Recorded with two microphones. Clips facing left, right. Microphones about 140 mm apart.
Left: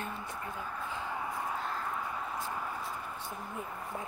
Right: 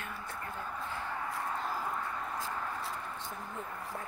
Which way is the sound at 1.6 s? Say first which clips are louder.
Right 1 dB; 5° right (ahead or behind).